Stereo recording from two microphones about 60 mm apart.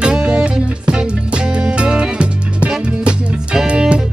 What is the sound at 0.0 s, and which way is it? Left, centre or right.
Music, centre.